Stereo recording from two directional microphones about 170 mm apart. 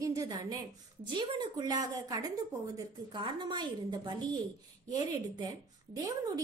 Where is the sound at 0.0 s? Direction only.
20° right (ahead or behind).